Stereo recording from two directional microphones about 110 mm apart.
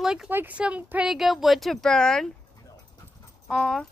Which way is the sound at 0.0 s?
5° right (ahead or behind).